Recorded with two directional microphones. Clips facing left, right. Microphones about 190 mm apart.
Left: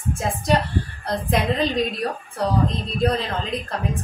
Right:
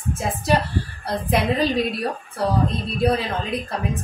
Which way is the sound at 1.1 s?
5° right (ahead or behind).